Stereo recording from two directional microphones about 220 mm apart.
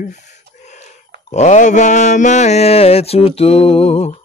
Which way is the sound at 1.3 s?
30° left (ahead or behind).